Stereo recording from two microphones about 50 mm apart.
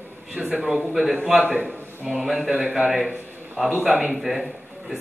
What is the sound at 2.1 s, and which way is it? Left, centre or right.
A man's voice, centre.